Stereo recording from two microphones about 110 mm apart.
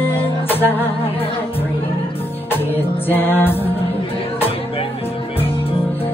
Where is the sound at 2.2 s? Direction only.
20° left (ahead or behind).